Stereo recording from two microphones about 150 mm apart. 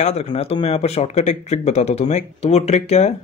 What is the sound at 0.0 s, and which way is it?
Speech, 50° left (ahead or behind).